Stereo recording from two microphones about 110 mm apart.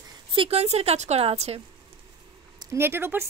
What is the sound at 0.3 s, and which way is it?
A woman's voice, 60° right (ahead or behind).